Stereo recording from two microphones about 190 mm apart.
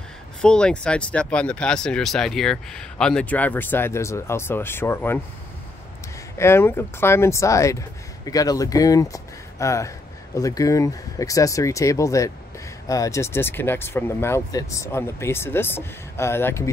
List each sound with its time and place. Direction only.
0.4 s speech: 5° left (ahead or behind)
6.3 s speech: 15° left (ahead or behind)